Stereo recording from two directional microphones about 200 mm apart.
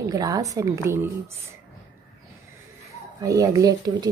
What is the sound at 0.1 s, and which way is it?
Speech, 15° right (ahead or behind).